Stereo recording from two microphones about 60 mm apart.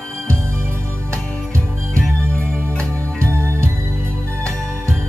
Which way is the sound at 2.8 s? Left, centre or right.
Right.